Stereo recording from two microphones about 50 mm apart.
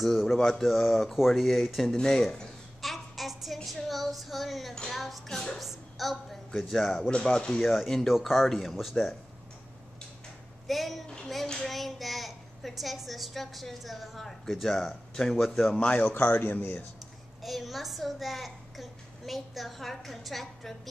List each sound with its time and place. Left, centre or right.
0.0 s a woman's voice: centre
2.0 s speech: centre
2.8 s a sound: centre
3.6 s child singing: centre
4.8 s a woman's voice: centre
7.1 s speech: centre
7.6 s a woman's voice: centre
10.7 s a woman's voice: centre
11.1 s child singing: centre
11.7 s a woman's voice: centre
15.8 s speech: left
16.1 s a man's voice: left
17.4 s a woman's voice: centre